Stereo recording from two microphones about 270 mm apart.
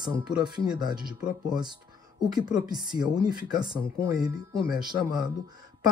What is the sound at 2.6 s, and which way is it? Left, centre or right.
Speech, centre.